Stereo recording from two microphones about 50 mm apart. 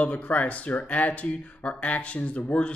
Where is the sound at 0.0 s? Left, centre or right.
Left.